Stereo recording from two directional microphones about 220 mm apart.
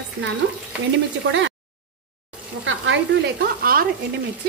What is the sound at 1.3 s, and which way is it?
Speech, 60° right (ahead or behind).